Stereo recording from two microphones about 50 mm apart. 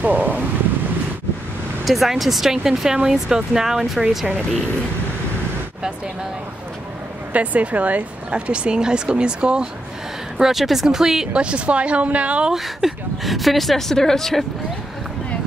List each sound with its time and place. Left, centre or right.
0.0 s speech: right
1.9 s speech: centre
7.3 s speech: right
10.3 s speech: centre
11.3 s speech: right
12.5 s speech: centre